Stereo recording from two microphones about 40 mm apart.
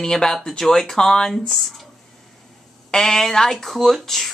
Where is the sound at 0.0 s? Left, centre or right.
Centre.